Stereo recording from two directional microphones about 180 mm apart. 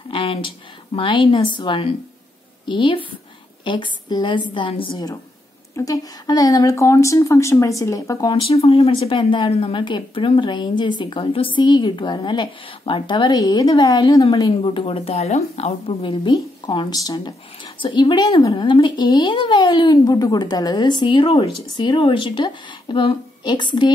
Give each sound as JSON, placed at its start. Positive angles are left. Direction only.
{"t": 0.1, "sound": "a woman's voice", "side_deg": 30}
{"t": 8.4, "sound": "a woman's voice", "side_deg": 30}